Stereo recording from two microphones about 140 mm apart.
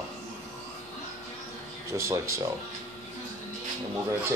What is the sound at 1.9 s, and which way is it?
Speech, 20° right (ahead or behind).